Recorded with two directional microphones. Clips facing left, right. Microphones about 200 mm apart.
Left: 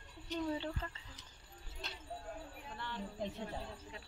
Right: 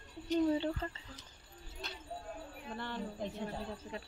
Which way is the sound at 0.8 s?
30° right (ahead or behind).